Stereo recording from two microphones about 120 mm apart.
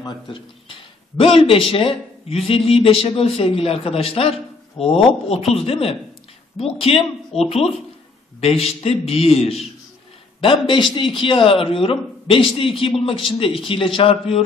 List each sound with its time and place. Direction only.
0.0 s a man's voice: 45° left (ahead or behind)
10.4 s speech: 45° left (ahead or behind)